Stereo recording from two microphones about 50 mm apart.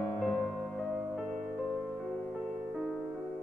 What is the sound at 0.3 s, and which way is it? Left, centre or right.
Music, centre.